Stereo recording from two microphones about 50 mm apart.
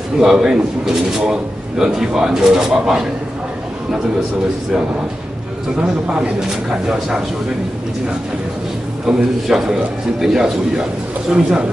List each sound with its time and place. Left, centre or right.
0.2 s speech: centre
5.8 s speech: right
9.0 s speech: centre